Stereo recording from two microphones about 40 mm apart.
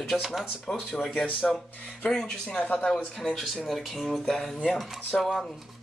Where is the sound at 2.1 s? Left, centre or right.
Centre.